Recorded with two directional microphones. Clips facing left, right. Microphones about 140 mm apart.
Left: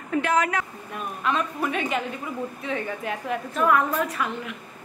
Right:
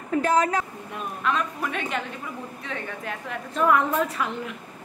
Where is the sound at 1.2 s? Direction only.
5° left (ahead or behind).